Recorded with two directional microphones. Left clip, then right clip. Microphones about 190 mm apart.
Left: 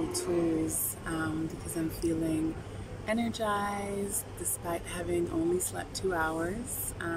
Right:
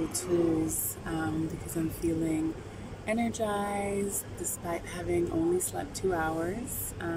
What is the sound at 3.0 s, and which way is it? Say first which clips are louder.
A woman's voice: right 1 dB; 5° right (ahead or behind).